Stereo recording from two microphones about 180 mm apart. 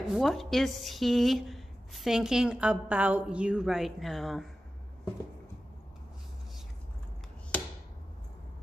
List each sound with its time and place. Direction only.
0.1 s a woman's voice: centre (ahead or behind)